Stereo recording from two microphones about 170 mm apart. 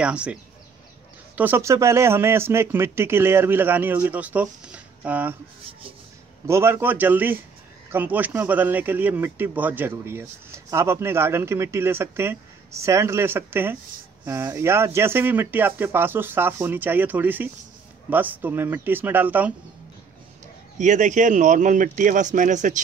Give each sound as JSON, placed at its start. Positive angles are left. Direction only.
{"t": 0.0, "sound": "speech", "side_deg": -5}
{"t": 6.4, "sound": "speech", "side_deg": -15}
{"t": 20.7, "sound": "speech", "side_deg": -45}